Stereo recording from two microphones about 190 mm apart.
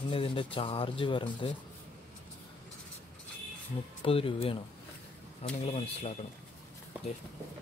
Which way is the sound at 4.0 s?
30° left (ahead or behind).